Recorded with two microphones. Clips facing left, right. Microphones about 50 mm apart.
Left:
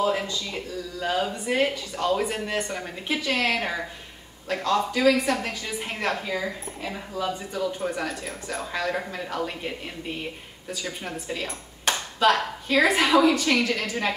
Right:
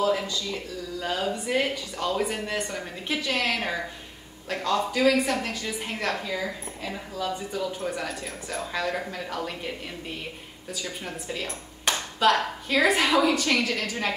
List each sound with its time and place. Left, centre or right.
0.0 s speech: centre
0.9 s a woman's voice: centre